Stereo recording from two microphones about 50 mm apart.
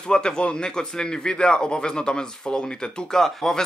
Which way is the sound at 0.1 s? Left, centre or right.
Centre.